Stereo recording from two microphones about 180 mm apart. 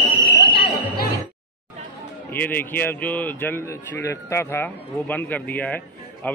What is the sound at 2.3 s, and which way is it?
A man's voice, 10° left (ahead or behind).